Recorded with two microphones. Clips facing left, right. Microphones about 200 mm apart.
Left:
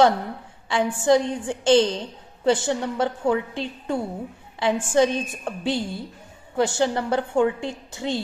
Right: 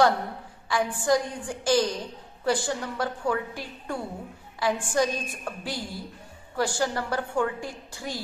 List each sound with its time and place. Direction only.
0.7 s a woman's voice: 25° left (ahead or behind)